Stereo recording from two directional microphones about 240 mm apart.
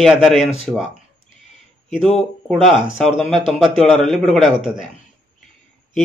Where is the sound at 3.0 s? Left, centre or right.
Centre.